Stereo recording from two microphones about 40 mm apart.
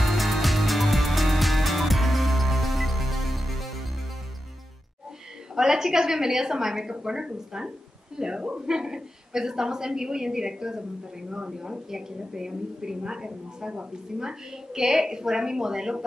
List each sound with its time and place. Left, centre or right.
0.0 s music: centre
5.6 s a woman's voice: centre